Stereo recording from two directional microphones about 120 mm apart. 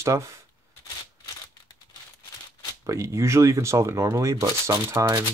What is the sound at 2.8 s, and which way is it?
Speech, 25° right (ahead or behind).